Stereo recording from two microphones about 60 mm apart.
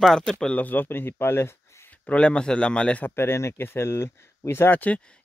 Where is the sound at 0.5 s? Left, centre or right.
Left.